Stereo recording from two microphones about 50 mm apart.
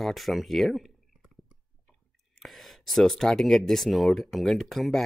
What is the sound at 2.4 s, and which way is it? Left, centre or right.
Speech, centre.